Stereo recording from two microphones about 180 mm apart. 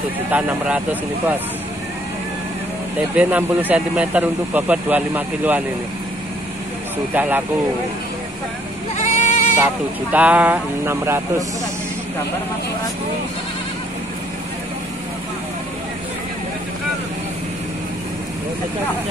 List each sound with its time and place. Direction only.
0.3 s a man's voice: 10° right (ahead or behind)
3.2 s a man's voice: 10° right (ahead or behind)
7.2 s a man's voice: 10° right (ahead or behind)
8.9 s goat: 40° left (ahead or behind)
10.1 s a man's voice: 10° right (ahead or behind)